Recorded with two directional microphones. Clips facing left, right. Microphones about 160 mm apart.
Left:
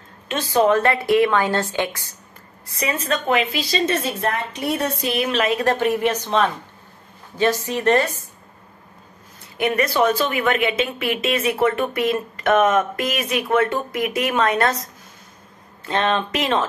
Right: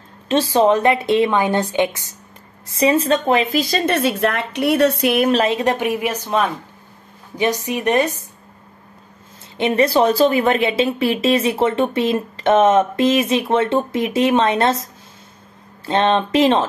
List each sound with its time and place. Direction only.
0.3 s speech: 25° right (ahead or behind); by 5.3 s 55° right (ahead or behind)
5.3 s a woman's voice: 30° right (ahead or behind)
5.6 s a woman's voice: 15° right (ahead or behind)
9.6 s speech: 25° right (ahead or behind)